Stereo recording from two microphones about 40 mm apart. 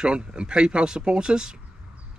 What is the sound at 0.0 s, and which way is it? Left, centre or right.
Speech, right.